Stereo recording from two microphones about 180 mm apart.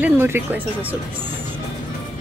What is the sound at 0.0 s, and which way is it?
Speech, 10° right (ahead or behind).